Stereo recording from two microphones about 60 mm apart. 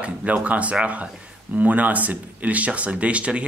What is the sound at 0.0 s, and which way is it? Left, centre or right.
Speech, right.